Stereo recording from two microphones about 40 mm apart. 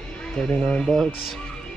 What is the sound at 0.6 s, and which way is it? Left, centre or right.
Speech, centre.